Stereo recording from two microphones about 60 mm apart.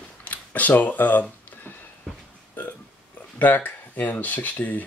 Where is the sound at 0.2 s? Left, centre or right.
Left.